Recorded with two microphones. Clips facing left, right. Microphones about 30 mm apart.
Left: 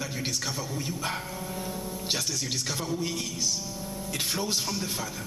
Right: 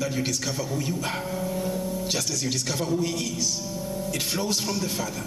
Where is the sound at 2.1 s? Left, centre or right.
Left.